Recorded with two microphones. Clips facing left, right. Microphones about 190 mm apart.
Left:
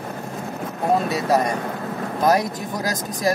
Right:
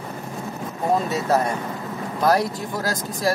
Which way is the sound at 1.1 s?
15° left (ahead or behind).